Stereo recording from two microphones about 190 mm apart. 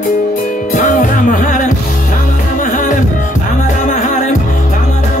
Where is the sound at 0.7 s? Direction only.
45° left (ahead or behind).